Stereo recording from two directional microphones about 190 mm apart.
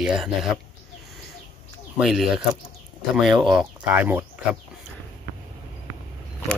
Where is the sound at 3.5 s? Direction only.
10° right (ahead or behind).